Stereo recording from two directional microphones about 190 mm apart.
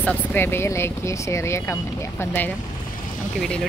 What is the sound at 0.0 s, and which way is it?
Speech, 5° left (ahead or behind).